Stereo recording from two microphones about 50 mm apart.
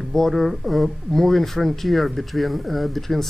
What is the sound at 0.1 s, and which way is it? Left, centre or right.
Speech, centre.